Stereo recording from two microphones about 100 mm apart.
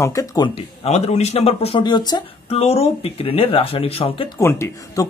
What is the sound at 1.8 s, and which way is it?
Speech, 45° left (ahead or behind).